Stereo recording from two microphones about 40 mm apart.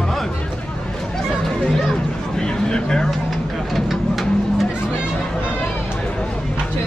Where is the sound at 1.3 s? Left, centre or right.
Centre.